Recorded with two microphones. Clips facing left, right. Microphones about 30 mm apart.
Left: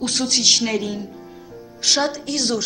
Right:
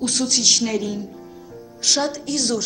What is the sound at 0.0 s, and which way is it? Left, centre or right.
A woman's voice, centre.